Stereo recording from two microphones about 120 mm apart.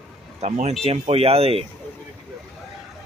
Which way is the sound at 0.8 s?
55° right (ahead or behind).